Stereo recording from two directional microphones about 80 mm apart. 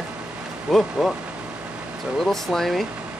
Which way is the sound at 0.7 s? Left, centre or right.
Centre.